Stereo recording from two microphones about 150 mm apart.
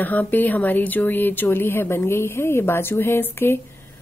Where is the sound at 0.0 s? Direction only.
10° left (ahead or behind).